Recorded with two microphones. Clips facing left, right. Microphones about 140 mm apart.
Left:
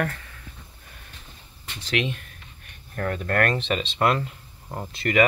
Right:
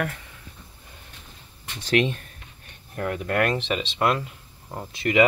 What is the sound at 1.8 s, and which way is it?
Speech, 40° right (ahead or behind).